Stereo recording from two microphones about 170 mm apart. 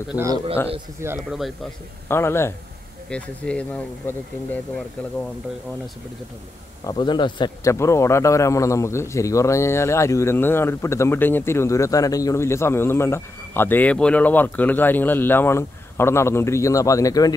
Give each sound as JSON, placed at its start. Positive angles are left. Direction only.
{"t": 0.1, "sound": "a man's voice", "side_deg": -15}
{"t": 2.0, "sound": "speech", "side_deg": 15}
{"t": 6.9, "sound": "speech", "side_deg": 25}